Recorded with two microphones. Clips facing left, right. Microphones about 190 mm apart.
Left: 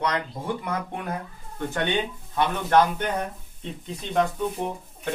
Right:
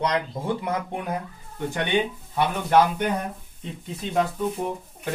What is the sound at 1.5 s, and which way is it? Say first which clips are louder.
Speech: right 2 dB; 15° right (ahead or behind).